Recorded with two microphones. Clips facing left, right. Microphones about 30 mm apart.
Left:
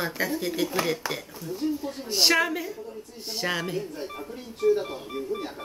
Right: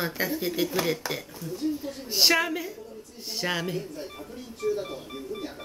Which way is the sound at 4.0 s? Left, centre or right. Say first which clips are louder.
Left 3 dB; left.